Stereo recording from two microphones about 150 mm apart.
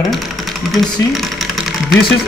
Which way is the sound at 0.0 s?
Centre (ahead or behind).